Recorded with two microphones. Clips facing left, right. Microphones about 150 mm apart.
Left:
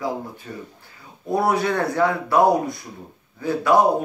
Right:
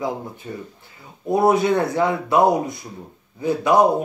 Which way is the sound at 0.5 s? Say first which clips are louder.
Right 3 dB; 25° right (ahead or behind).